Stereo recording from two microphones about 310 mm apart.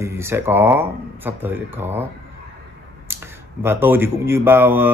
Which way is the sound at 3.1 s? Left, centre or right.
Centre.